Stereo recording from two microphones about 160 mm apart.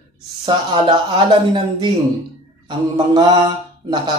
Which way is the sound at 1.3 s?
30° right (ahead or behind).